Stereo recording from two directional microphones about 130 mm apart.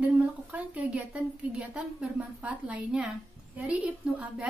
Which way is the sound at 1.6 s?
10° right (ahead or behind).